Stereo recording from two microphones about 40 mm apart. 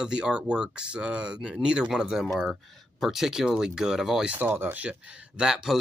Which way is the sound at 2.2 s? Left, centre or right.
Centre.